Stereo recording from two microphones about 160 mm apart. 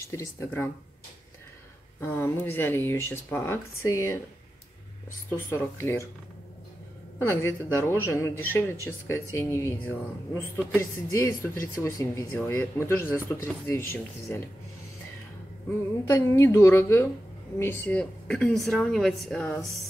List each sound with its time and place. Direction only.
0.0 s speech: 20° left (ahead or behind)
2.0 s speech: 15° left (ahead or behind)
5.5 s speech: 15° left (ahead or behind)
7.2 s speech: 15° left (ahead or behind)
16.1 s speech: 20° left (ahead or behind)